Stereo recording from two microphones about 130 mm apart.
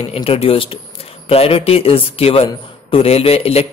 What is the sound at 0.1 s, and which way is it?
A man's voice, 50° left (ahead or behind).